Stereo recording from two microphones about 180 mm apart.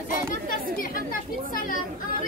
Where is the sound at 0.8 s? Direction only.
50° left (ahead or behind).